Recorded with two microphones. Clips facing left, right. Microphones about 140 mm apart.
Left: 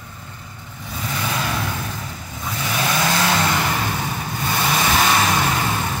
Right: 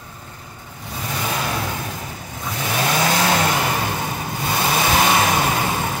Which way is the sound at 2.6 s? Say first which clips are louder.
Right 2 dB; 30° right (ahead or behind).